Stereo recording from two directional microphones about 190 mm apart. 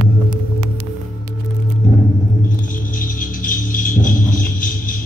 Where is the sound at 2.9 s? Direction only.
45° left (ahead or behind).